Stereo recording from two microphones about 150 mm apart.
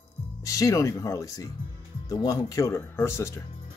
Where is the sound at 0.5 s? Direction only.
20° left (ahead or behind).